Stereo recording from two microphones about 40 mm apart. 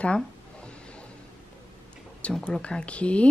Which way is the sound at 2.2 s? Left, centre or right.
Left.